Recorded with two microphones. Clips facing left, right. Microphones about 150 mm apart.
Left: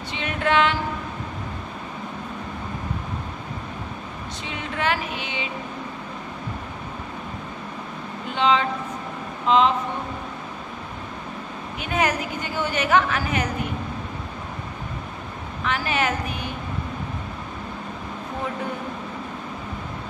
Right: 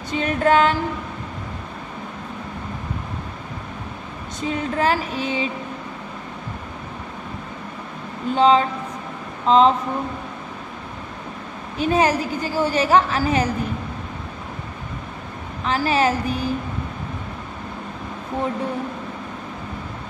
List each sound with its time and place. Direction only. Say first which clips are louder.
0.1 s female singing: right 5 dB; 40° right (ahead or behind)
4.4 s a woman's voice: right 8 dB; 40° right (ahead or behind)
8.4 s a woman's voice: right 5 dB; 40° right (ahead or behind)
11.8 s a woman's voice: right 6 dB; 30° right (ahead or behind)
15.6 s a woman's voice: right 5 dB; 35° right (ahead or behind)